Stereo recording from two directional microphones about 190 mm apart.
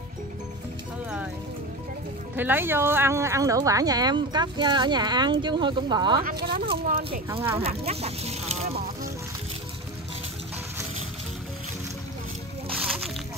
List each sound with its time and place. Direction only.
2.3 s speech: 10° right (ahead or behind)
6.2 s a sound: 60° right (ahead or behind)
7.5 s speech: 30° right (ahead or behind)
8.7 s boat: 50° right (ahead or behind)